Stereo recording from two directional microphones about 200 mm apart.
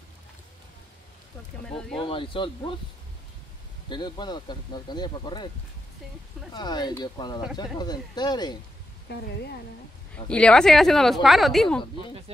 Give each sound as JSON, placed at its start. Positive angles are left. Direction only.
{"t": 1.7, "sound": "speech", "side_deg": 5}
{"t": 2.0, "sound": "speech", "side_deg": 25}
{"t": 3.9, "sound": "speech", "side_deg": 20}
{"t": 6.5, "sound": "speech", "side_deg": 20}
{"t": 9.1, "sound": "a woman's voice", "side_deg": 55}
{"t": 10.1, "sound": "speech", "side_deg": 5}